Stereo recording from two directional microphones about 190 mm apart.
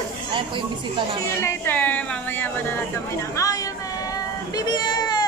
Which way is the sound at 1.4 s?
10° left (ahead or behind).